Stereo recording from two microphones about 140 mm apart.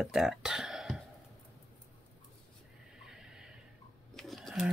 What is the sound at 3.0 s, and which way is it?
Neigh, 5° right (ahead or behind).